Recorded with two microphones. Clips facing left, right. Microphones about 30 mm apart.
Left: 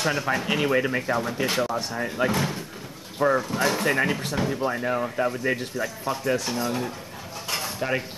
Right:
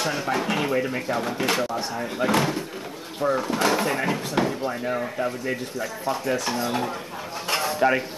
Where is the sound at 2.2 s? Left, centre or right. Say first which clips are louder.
Right 1 dB; left.